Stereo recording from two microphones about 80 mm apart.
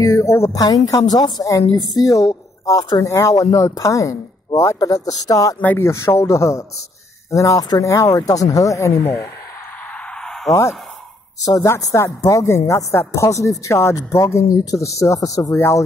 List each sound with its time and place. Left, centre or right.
0.0 s speech: left
0.6 s a woman's voice: left
3.0 s a woman's voice: left
5.8 s speech: left
11.4 s a woman's voice: left
15.5 s speech: left